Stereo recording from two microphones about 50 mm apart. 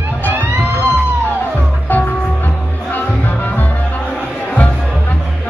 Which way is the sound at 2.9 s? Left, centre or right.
Left.